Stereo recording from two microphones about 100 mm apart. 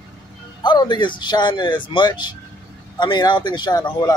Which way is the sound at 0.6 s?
50° left (ahead or behind).